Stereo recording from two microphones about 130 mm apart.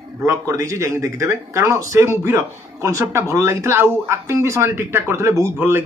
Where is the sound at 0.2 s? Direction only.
25° right (ahead or behind).